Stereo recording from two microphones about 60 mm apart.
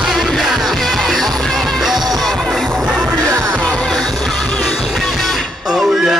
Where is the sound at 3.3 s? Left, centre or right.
Right.